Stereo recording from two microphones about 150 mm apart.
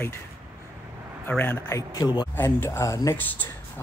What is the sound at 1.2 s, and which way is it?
Speech, 15° left (ahead or behind).